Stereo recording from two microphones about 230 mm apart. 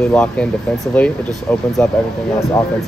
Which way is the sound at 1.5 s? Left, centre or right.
Centre.